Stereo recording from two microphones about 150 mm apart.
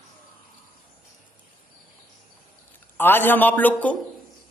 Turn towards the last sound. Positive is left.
turn(degrees=10)  # may be behind; listen again after turning